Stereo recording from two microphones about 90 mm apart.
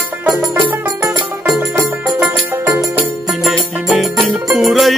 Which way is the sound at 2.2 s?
40° right (ahead or behind).